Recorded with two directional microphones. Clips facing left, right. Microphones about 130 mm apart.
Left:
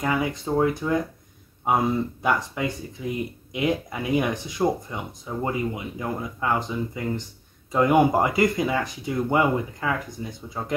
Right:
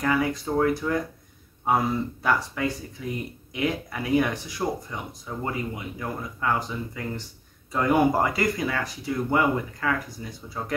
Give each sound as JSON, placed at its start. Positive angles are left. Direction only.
{"t": 0.0, "sound": "speech", "side_deg": 20}
{"t": 2.2, "sound": "speech", "side_deg": 20}